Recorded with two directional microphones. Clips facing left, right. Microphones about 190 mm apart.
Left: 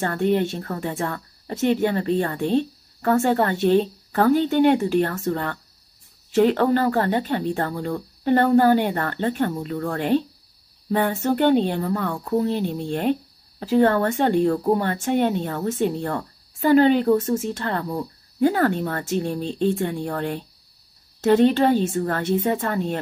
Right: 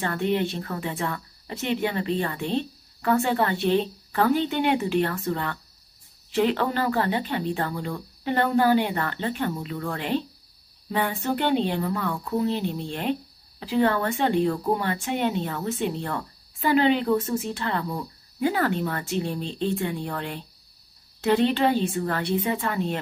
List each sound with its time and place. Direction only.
0.0 s speech: 45° left (ahead or behind)